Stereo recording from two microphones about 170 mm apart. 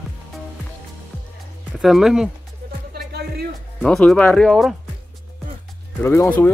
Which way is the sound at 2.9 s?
65° right (ahead or behind).